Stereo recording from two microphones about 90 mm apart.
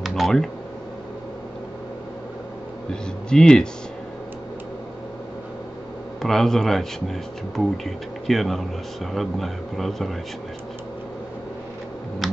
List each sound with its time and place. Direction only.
0.0 s computer keyboard: centre (ahead or behind)
2.9 s speech: 10° left (ahead or behind)
6.2 s speech: 5° left (ahead or behind)